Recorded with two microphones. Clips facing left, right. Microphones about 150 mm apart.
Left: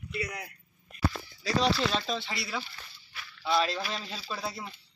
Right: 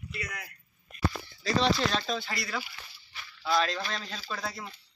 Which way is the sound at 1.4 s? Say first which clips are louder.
Right 1 dB; 5° left (ahead or behind).